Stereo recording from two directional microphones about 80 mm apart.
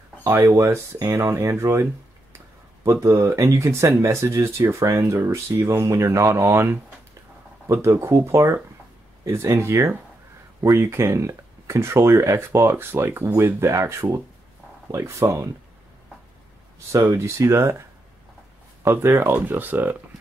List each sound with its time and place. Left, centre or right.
0.3 s speech: right
10.6 s speech: right
17.1 s speech: right
18.9 s speech: right